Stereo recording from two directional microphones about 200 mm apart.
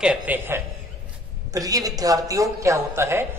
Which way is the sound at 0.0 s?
5° right (ahead or behind).